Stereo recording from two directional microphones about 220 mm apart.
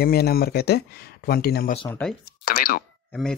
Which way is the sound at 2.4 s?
40° left (ahead or behind).